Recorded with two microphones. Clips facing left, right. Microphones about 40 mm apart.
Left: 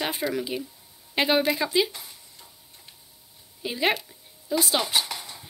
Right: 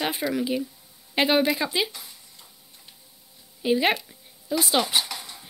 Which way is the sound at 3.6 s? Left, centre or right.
Centre.